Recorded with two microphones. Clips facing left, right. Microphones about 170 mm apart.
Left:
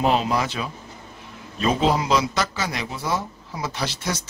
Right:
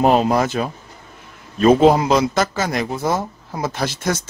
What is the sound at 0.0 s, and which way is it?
A man's voice, 45° right (ahead or behind).